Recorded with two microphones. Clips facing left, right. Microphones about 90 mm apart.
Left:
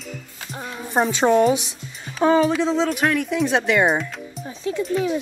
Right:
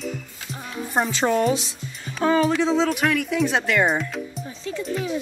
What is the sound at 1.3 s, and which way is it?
Speech, 25° left (ahead or behind).